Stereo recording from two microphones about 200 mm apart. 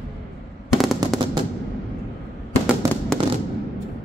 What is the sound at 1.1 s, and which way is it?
Fireworks, 25° right (ahead or behind).